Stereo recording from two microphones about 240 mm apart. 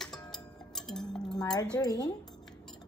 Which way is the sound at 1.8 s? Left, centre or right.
Centre.